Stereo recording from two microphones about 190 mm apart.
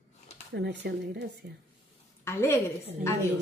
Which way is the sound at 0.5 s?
60° right (ahead or behind).